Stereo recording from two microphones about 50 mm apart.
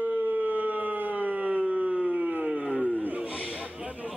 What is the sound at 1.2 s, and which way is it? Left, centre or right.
Howl, right.